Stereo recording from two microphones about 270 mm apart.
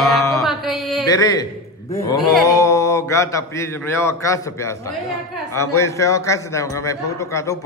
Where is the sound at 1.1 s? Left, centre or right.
Centre.